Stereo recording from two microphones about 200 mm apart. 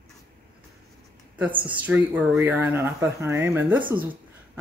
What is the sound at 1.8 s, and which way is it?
A man's voice, 10° right (ahead or behind).